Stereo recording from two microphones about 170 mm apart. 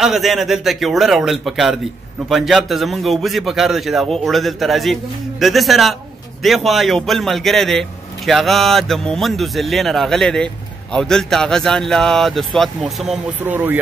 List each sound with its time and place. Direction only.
0.0 s speech: centre (ahead or behind)